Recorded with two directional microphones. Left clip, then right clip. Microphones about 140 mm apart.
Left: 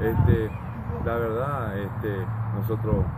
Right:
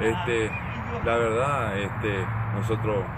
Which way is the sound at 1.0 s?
10° right (ahead or behind).